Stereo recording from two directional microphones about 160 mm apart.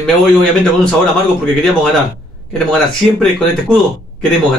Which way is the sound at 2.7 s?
5° left (ahead or behind).